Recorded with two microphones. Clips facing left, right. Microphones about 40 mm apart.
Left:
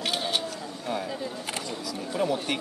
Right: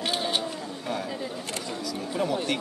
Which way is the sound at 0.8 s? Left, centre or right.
Centre.